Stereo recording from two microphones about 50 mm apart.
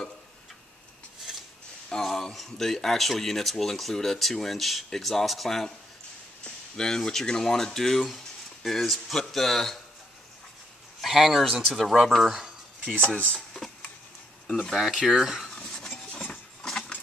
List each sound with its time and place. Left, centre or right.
1.3 s a sound: centre
1.9 s speech: centre
6.4 s a sound: centre
7.0 s speech: centre
11.0 s speech: centre
13.1 s speech: centre
14.7 s speech: centre
15.5 s dishes: centre
16.1 s a sound: left